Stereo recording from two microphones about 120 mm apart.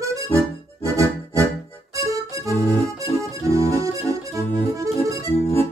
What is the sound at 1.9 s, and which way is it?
Music, 25° right (ahead or behind).